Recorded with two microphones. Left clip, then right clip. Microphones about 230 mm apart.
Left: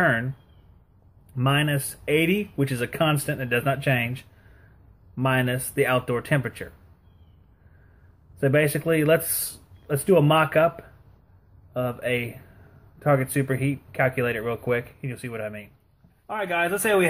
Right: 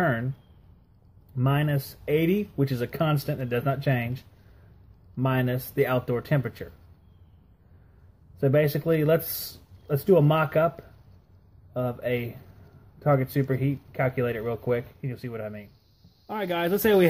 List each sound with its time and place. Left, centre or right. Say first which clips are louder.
0.0 s speech: left 4 dB; centre
1.3 s speech: left 4 dB; centre
8.4 s speech: left 2 dB; centre
16.3 s speech: left 2 dB; right